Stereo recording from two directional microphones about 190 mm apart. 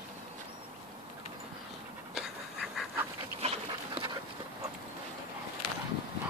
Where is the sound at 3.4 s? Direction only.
30° right (ahead or behind).